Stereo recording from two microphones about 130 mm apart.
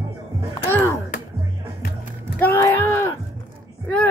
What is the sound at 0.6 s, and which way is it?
Speech, 15° left (ahead or behind).